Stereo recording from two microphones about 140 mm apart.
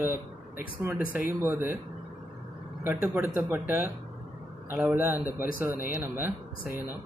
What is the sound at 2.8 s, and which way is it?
Speech, 15° right (ahead or behind).